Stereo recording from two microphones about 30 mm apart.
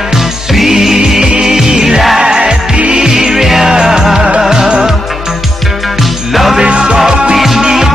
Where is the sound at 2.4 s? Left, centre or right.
Right.